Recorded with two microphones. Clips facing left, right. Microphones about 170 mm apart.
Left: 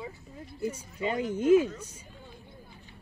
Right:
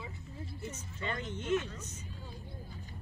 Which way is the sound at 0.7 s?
10° left (ahead or behind).